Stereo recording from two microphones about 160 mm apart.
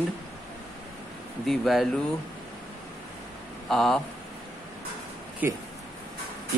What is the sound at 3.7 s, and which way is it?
Speech, centre (ahead or behind).